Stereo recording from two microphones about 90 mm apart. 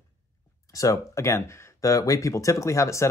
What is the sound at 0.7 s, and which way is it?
Speech, 40° left (ahead or behind).